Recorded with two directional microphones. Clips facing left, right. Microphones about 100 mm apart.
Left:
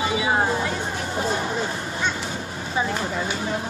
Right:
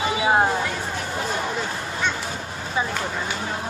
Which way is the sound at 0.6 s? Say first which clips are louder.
Left 1 dB; 25° left (ahead or behind).